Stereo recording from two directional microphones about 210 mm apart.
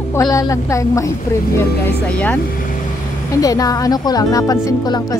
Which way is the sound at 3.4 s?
15° left (ahead or behind).